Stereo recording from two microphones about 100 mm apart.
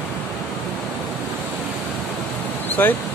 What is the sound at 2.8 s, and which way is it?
Speech, 20° left (ahead or behind).